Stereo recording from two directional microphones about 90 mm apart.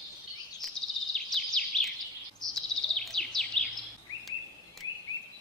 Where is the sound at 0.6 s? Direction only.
5° left (ahead or behind).